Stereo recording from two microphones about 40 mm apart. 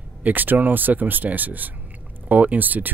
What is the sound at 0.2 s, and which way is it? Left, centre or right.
Speech, right.